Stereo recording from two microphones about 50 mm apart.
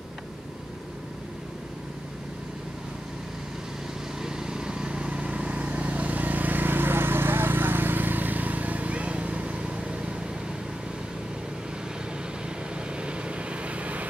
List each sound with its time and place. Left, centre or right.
4.2 s vehicle: centre
12.9 s vehicle: right